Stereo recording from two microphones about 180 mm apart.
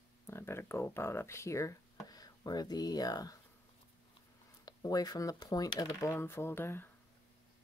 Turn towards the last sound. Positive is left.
turn(degrees=15)  # may be behind; listen again after turning